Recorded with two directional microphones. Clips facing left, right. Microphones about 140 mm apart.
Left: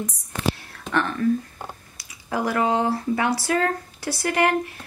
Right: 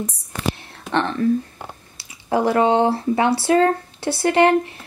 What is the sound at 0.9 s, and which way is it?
Speech, 25° right (ahead or behind).